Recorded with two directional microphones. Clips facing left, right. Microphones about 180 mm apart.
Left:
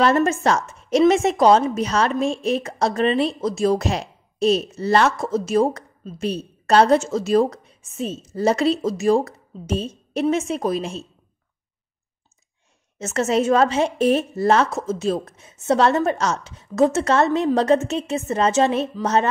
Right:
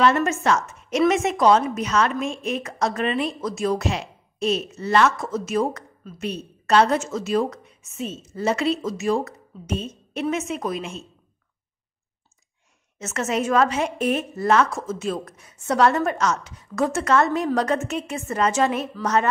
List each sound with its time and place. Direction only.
0.0 s a woman's voice: 35° left (ahead or behind)
13.0 s a woman's voice: 30° left (ahead or behind)